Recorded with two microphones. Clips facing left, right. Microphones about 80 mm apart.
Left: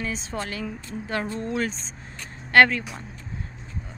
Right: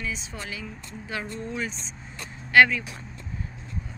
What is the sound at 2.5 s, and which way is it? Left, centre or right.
Speech, left.